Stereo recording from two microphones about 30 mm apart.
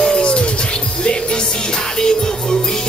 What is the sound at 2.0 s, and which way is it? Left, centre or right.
Music, left.